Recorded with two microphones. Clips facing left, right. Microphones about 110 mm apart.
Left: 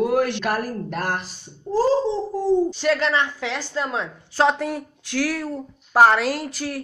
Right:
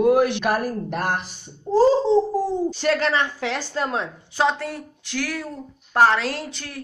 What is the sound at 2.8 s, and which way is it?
Speech, 50° right (ahead or behind).